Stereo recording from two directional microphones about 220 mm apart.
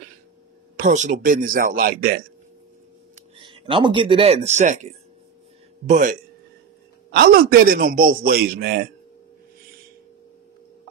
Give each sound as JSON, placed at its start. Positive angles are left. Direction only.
{"t": 0.7, "sound": "a man's voice", "side_deg": -35}
{"t": 3.3, "sound": "speech", "side_deg": -25}
{"t": 5.9, "sound": "a man's voice", "side_deg": -35}
{"t": 7.1, "sound": "a man's voice", "side_deg": -45}